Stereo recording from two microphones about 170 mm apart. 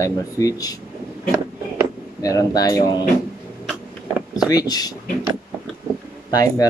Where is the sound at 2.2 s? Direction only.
20° left (ahead or behind).